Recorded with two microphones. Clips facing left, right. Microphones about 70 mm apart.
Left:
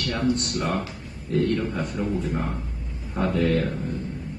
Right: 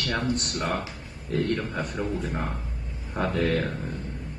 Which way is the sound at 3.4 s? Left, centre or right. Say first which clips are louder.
Left 3 dB; right.